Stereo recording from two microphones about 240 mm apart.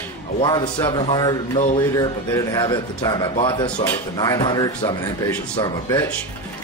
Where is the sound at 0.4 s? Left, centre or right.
Centre.